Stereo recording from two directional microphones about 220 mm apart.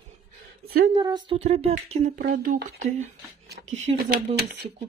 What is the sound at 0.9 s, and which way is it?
Speech, 20° right (ahead or behind).